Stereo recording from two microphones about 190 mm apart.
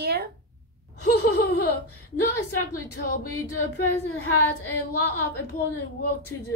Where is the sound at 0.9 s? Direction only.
60° left (ahead or behind).